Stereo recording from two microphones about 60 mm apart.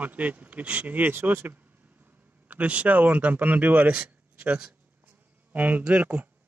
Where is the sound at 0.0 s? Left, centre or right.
Right.